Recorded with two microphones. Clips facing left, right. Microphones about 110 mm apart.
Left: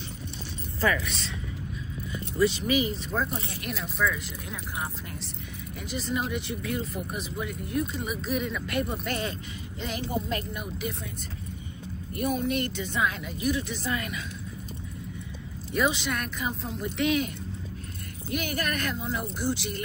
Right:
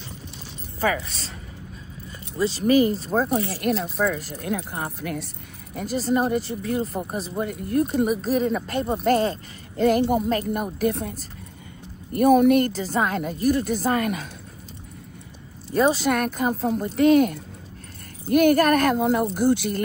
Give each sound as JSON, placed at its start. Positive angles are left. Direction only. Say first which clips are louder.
{"t": 0.8, "sound": "speech", "louder": "right 3 dB", "side_deg": -35}
{"t": 2.3, "sound": "speech", "louder": "even", "side_deg": -30}
{"t": 2.6, "sound": "speech", "louder": "right 8 dB", "side_deg": -45}
{"t": 3.3, "sound": "speech", "louder": "right 11 dB", "side_deg": -35}
{"t": 3.6, "sound": "speech", "louder": "right 6 dB", "side_deg": -55}
{"t": 5.8, "sound": "speech", "louder": "right 9 dB", "side_deg": -40}
{"t": 7.3, "sound": "speech", "louder": "right 8 dB", "side_deg": -50}
{"t": 9.8, "sound": "speech", "louder": "right 13 dB", "side_deg": -50}
{"t": 12.2, "sound": "speech", "louder": "right 12 dB", "side_deg": -55}
{"t": 15.7, "sound": "speech", "louder": "right 7 dB", "side_deg": -40}